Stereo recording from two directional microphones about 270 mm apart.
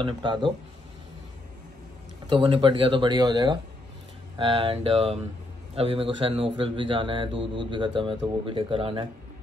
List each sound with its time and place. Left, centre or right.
0.0 s speech: centre
2.2 s a man's voice: centre